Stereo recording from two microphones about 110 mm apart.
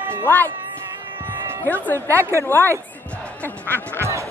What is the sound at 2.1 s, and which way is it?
Speech, 25° right (ahead or behind).